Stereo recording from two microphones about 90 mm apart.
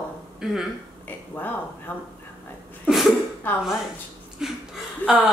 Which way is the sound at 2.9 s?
Centre (ahead or behind).